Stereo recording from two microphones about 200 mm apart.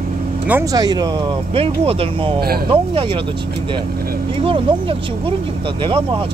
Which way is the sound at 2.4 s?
50° right (ahead or behind).